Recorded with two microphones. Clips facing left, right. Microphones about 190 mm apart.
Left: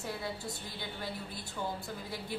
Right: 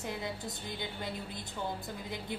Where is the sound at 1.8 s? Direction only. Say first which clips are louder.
Right 1 dB; 20° right (ahead or behind).